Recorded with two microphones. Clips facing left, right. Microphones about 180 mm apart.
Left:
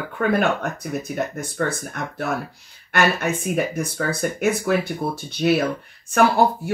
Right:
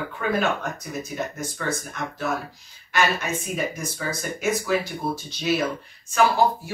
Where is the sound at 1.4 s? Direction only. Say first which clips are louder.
Left 4 dB; 60° left (ahead or behind).